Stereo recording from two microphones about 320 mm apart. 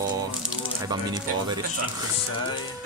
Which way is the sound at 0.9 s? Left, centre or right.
Centre.